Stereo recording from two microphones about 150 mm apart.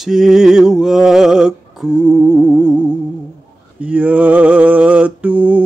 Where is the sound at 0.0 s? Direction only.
5° right (ahead or behind).